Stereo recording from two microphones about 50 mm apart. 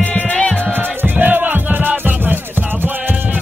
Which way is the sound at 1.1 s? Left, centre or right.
Right.